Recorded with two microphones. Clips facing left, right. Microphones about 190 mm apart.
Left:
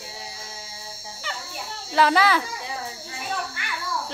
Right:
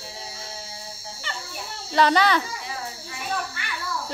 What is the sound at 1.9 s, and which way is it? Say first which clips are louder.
Speech: even; 5° left (ahead or behind).